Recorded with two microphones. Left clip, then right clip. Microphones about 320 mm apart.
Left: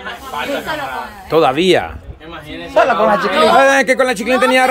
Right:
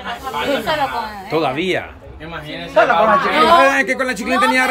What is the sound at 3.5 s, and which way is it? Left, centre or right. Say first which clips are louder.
Speech: left 3 dB; centre.